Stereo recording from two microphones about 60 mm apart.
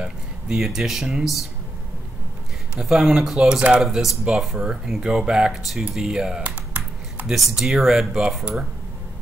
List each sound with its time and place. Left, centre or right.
0.6 s speech: centre
2.7 s speech: centre
6.4 s computer keyboard: right
7.2 s speech: centre